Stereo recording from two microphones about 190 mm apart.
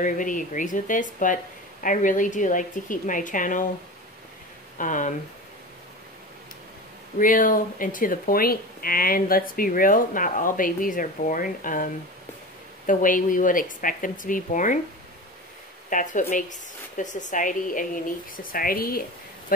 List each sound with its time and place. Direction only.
0.0 s speech: 45° left (ahead or behind)
4.7 s speech: 40° left (ahead or behind)
7.2 s speech: 45° left (ahead or behind)
15.9 s speech: 45° left (ahead or behind)